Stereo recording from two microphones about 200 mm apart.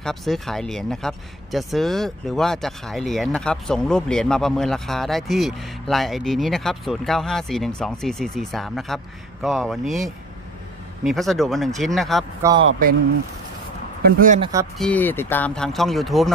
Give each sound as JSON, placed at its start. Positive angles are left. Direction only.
{"t": 0.0, "sound": "speech", "side_deg": 0}
{"t": 11.1, "sound": "speech", "side_deg": 0}
{"t": 14.0, "sound": "speech", "side_deg": -40}
{"t": 14.4, "sound": "speech", "side_deg": -15}
{"t": 14.8, "sound": "speech", "side_deg": 10}